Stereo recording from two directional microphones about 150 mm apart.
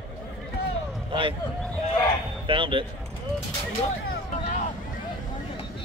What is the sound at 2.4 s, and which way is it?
Speech, 35° right (ahead or behind).